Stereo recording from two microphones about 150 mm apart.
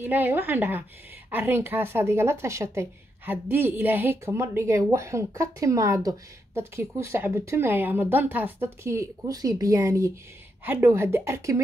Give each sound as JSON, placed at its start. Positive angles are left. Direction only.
{"t": 0.0, "sound": "speech", "side_deg": -15}